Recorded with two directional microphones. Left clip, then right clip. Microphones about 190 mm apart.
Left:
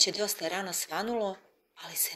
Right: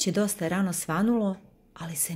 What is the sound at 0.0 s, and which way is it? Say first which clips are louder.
Speech: even; 40° right (ahead or behind).